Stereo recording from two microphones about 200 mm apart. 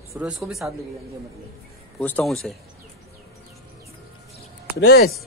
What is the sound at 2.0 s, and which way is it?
Speech, 5° left (ahead or behind).